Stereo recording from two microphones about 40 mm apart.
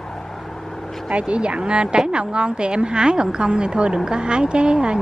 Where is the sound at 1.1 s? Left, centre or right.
Right.